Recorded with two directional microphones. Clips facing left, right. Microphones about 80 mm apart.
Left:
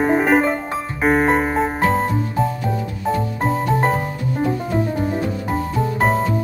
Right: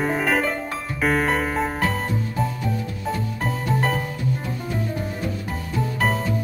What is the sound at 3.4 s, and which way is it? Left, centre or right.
Music, left.